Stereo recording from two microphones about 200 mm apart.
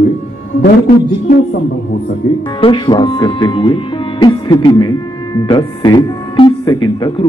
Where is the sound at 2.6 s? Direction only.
25° left (ahead or behind).